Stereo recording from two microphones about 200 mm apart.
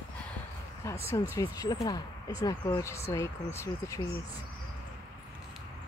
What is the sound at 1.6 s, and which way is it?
Speech, 20° left (ahead or behind).